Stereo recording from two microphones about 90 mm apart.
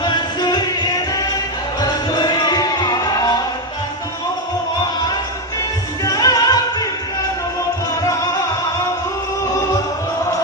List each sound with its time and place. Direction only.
0.0 s music: 55° left (ahead or behind)
1.8 s music: 50° left (ahead or behind)
6.0 s music: 45° left (ahead or behind)
8.0 s music: 35° left (ahead or behind)